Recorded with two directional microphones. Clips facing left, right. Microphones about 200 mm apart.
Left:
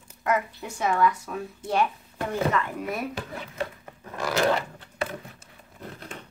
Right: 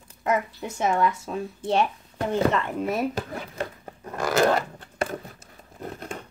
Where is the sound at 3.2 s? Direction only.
40° right (ahead or behind).